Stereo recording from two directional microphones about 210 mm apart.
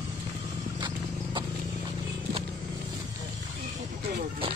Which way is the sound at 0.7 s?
20° right (ahead or behind).